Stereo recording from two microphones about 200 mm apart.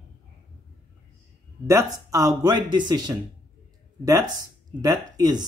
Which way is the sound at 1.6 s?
15° right (ahead or behind).